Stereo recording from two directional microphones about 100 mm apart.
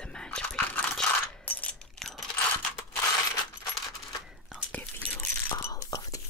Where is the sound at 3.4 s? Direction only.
45° left (ahead or behind).